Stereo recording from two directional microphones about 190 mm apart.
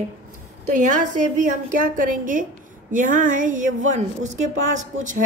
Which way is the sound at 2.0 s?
45° right (ahead or behind).